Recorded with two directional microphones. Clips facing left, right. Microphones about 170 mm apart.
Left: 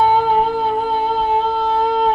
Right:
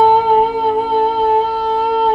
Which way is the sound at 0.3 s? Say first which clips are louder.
Right 3 dB; centre (ahead or behind).